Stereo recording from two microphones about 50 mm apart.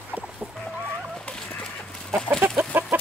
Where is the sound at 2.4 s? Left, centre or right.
Right.